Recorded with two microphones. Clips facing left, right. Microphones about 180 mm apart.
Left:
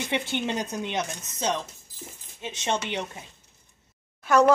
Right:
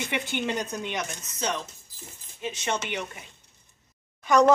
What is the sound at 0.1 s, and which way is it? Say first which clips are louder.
Speech: left 2 dB; 25° left (ahead or behind).